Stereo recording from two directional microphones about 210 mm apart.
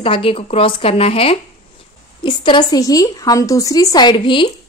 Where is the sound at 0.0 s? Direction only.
25° left (ahead or behind).